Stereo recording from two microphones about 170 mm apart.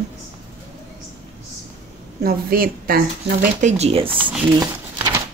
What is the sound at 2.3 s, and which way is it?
Speech, 60° right (ahead or behind).